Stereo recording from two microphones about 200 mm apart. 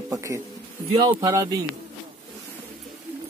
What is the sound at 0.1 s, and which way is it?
Speech, 15° right (ahead or behind).